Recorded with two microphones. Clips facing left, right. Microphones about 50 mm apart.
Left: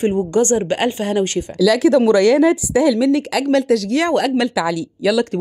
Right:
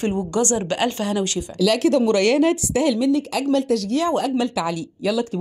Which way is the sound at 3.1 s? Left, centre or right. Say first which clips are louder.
Left 4 dB; left.